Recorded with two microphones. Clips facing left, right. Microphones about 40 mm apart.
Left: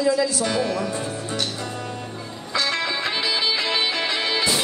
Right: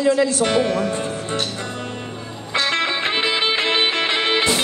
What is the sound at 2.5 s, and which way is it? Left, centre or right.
Music, right.